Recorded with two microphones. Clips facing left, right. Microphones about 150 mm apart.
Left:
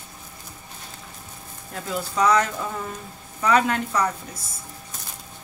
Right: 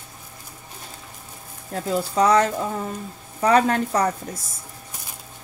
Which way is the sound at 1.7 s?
35° right (ahead or behind).